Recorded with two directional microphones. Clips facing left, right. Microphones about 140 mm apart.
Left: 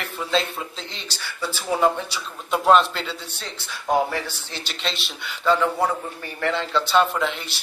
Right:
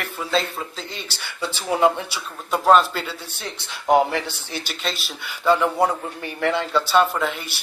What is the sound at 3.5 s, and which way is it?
Speech, 20° right (ahead or behind).